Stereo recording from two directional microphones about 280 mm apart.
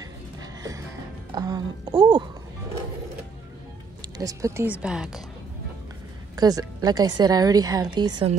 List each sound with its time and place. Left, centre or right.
0.4 s music: centre
1.3 s a sound: centre
4.2 s speech: centre
6.3 s a woman's voice: centre